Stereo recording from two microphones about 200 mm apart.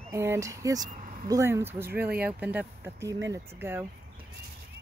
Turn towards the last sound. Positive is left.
turn(degrees=-10)  # may be behind; listen again after turning